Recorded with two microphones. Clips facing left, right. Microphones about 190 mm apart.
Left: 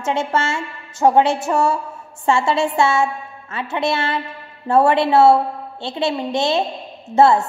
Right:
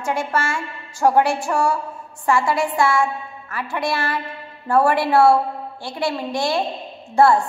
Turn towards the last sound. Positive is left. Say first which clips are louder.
# left 2 dB
turn(degrees=20)  # may be behind; listen again after turning